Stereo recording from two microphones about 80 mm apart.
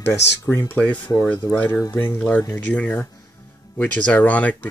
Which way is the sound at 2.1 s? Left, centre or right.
Centre.